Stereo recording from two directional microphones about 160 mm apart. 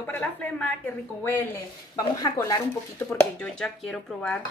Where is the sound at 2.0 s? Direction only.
25° left (ahead or behind).